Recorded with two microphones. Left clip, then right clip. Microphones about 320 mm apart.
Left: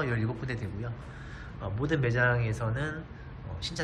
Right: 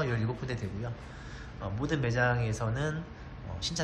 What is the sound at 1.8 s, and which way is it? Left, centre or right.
Speech, centre.